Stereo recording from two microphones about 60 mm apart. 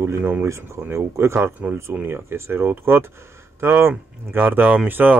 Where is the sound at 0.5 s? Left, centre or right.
Right.